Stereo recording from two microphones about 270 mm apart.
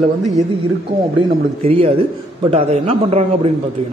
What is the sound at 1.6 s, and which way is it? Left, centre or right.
A man's voice, right.